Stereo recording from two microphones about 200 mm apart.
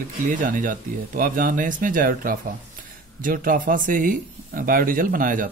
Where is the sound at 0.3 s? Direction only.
40° right (ahead or behind).